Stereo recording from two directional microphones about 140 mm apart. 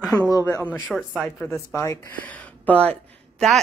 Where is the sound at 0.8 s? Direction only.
5° right (ahead or behind).